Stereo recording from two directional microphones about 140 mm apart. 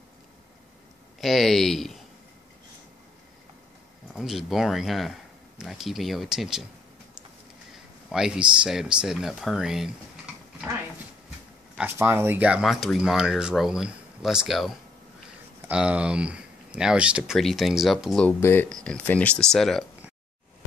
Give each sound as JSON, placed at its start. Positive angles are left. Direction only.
{"t": 1.2, "sound": "speech", "side_deg": 0}
{"t": 4.1, "sound": "speech", "side_deg": 0}
{"t": 8.1, "sound": "speech", "side_deg": -5}
{"t": 11.8, "sound": "speech", "side_deg": -15}
{"t": 18.4, "sound": "speech", "side_deg": 15}